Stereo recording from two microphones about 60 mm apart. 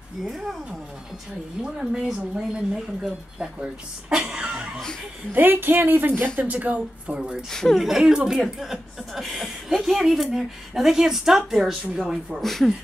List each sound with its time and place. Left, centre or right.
0.2 s speech: centre
1.6 s speech: centre
4.2 s a sound: centre
5.3 s speech: right
7.5 s speech: centre
7.8 s speech: centre
12.4 s speech: centre